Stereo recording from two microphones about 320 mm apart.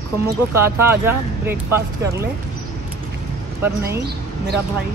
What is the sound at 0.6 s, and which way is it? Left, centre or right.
Speech, centre.